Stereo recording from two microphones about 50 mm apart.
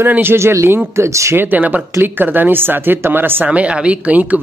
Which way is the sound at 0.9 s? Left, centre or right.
Right.